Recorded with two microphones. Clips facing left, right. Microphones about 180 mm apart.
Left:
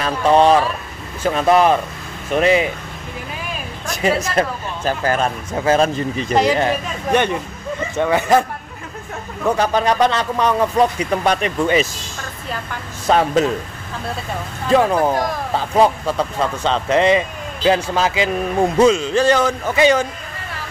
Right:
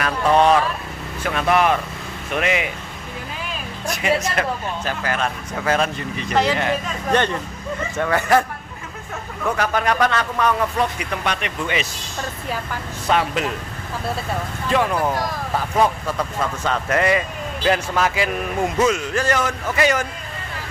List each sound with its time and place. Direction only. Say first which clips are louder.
0.0 s speech: left 3 dB; 30° left (ahead or behind)
4.0 s speech: left 3 dB; 35° left (ahead or behind)
5.5 s speech: left 6 dB; 25° left (ahead or behind)
7.1 s speech: left 3 dB; 15° left (ahead or behind)
9.6 s speech: left 3 dB; 30° left (ahead or behind)
13.0 s speech: left 6 dB; 40° left (ahead or behind)
14.7 s speech: left 5 dB; 30° left (ahead or behind)